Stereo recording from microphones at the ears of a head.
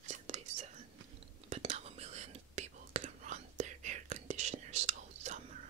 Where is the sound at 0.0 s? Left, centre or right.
Right.